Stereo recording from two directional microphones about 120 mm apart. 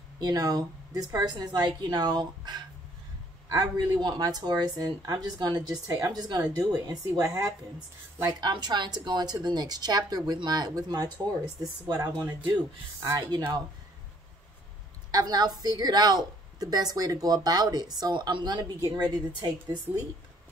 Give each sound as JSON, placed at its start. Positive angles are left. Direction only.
{"t": 0.2, "sound": "a woman's voice", "side_deg": -30}
{"t": 4.0, "sound": "a woman's voice", "side_deg": -35}
{"t": 15.0, "sound": "a woman's voice", "side_deg": -35}